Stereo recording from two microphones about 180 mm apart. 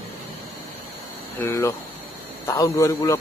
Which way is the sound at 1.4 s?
15° left (ahead or behind).